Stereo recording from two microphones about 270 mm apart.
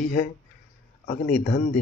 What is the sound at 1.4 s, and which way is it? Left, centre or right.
Speech, left.